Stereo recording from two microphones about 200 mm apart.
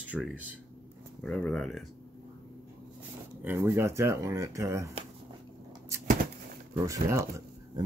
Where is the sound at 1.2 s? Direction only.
5° left (ahead or behind).